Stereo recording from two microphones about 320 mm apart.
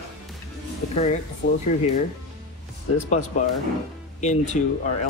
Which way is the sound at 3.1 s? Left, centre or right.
Left.